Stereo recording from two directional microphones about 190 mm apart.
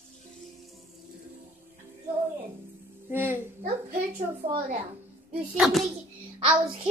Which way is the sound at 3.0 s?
10° right (ahead or behind).